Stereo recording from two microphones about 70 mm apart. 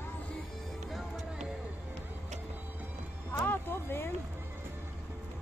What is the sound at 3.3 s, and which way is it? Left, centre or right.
Music, left.